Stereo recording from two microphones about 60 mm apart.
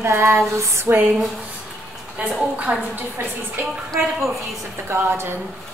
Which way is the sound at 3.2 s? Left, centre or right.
Right.